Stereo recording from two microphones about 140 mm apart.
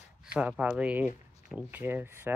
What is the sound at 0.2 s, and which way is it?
Speech, 5° right (ahead or behind).